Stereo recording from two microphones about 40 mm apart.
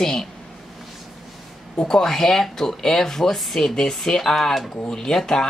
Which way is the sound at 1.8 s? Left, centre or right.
Centre.